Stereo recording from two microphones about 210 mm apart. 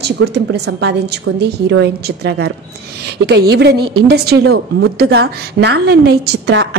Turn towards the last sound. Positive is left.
turn(degrees=-55)  # may be behind; listen again after turning